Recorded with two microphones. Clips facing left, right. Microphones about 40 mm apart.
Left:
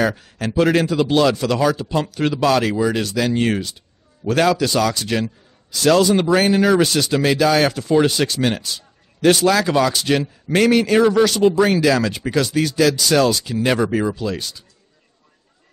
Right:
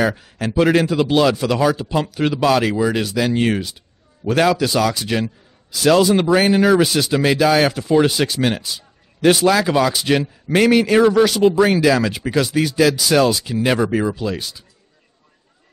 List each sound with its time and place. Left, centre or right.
0.0 s speech: centre